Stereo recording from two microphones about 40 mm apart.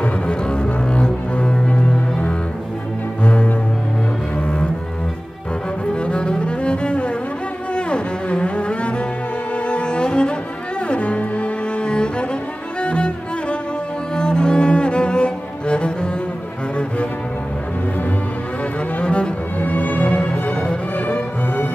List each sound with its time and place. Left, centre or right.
0.0 s double bass: left
4.4 s cello: left
6.0 s cello: left
18.9 s cello: left
19.6 s music: left
20.1 s music: left